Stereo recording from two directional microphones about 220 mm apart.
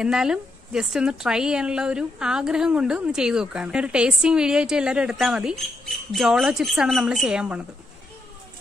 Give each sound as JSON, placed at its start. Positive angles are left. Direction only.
{"t": 0.0, "sound": "speech", "side_deg": -5}